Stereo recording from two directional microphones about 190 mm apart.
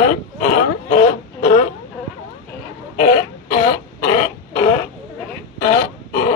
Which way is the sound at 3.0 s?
35° left (ahead or behind).